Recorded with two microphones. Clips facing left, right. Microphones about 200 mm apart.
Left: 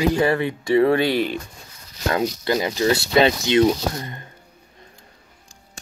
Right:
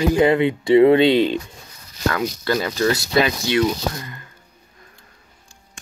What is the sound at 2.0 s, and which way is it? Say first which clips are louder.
Speech: even; 25° left (ahead or behind).